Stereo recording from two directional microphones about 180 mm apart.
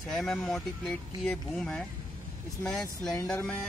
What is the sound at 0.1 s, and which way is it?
Speech, centre (ahead or behind).